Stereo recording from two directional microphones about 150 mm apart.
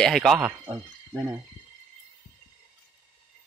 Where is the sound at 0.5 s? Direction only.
25° right (ahead or behind).